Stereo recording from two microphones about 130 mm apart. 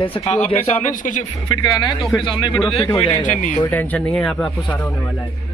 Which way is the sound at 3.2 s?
65° left (ahead or behind).